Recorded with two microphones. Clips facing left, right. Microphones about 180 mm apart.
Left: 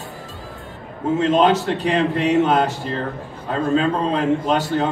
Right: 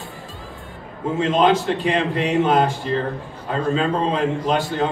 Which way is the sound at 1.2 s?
40° left (ahead or behind).